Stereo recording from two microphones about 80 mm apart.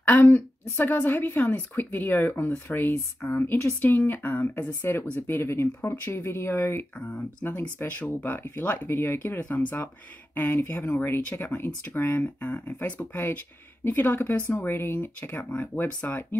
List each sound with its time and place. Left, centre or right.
0.0 s a woman's voice: left